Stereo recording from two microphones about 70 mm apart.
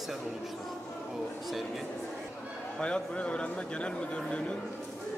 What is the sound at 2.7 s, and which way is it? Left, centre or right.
A man's voice, centre.